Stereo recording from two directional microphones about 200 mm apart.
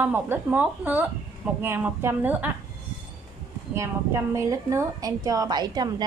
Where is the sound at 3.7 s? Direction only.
15° right (ahead or behind).